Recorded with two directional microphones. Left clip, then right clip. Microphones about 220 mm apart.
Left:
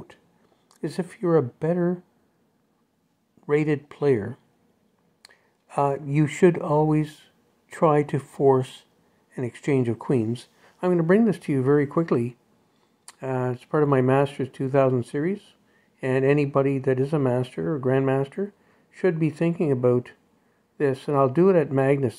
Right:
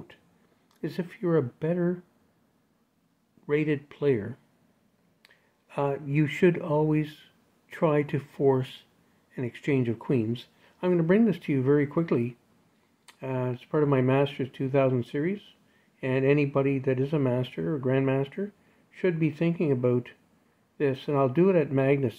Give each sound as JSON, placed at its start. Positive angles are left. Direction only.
{"t": 0.7, "sound": "speech", "side_deg": 15}
{"t": 3.4, "sound": "speech", "side_deg": 15}